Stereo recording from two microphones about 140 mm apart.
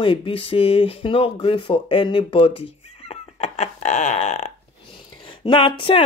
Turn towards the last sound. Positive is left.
turn(degrees=35)  # may be behind; listen again after turning